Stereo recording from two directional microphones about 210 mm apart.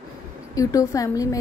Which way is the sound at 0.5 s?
15° left (ahead or behind).